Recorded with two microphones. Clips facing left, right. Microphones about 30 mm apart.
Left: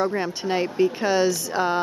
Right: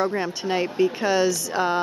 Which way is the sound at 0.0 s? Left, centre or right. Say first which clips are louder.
Even; centre.